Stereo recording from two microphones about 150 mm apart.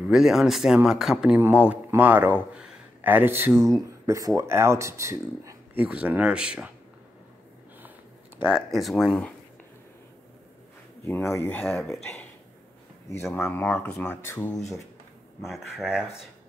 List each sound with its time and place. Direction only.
0.1 s a man's voice: 5° right (ahead or behind); by 5.9 s 20° right (ahead or behind)
5.9 s a man's voice: 10° right (ahead or behind)
8.4 s speech: 5° right (ahead or behind)
11.1 s speech: 15° left (ahead or behind)
13.2 s speech: 5° left (ahead or behind)
15.4 s speech: centre (ahead or behind)